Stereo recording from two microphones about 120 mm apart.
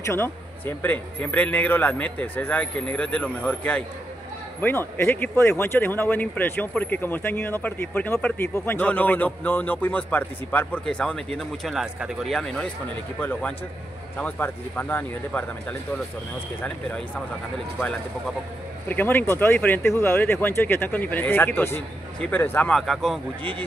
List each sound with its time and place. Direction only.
0.0 s speech: 20° left (ahead or behind)
16.6 s speech: 10° left (ahead or behind)
18.9 s speech: 15° left (ahead or behind)
22.8 s speech: centre (ahead or behind)